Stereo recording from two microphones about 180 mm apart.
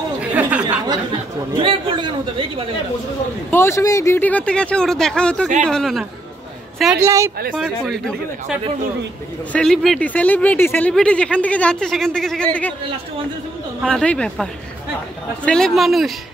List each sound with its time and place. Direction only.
0.2 s chatter: 10° right (ahead or behind)
1.6 s chatter: 30° right (ahead or behind)
3.4 s speech: 15° left (ahead or behind)
7.0 s speech: 15° right (ahead or behind)
7.5 s speech: centre (ahead or behind)
13.8 s speech: 5° left (ahead or behind)